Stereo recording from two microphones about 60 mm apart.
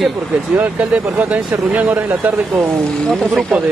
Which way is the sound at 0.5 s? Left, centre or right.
Right.